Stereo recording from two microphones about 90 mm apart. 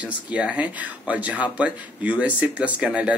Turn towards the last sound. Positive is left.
turn(degrees=-15)  # may be behind; listen again after turning